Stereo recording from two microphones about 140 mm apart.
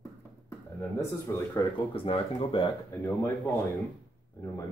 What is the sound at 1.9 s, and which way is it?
Speech, 40° left (ahead or behind).